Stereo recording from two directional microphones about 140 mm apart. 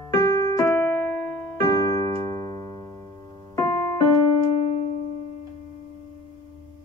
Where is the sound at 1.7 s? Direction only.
25° left (ahead or behind).